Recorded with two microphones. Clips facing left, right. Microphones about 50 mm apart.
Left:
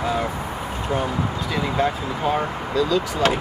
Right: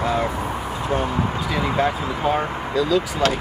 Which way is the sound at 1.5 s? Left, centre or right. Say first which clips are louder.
Right 1 dB; centre.